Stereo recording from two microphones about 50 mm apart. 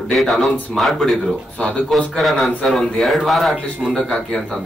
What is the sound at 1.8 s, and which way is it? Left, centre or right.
Speech, centre.